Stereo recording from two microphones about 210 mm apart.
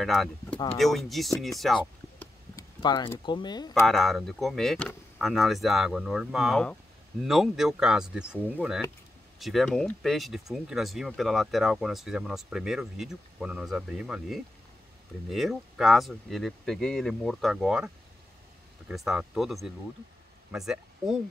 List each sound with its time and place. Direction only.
0.0 s speech: centre (ahead or behind)
2.1 s a sound: 15° left (ahead or behind)
3.8 s speech: centre (ahead or behind)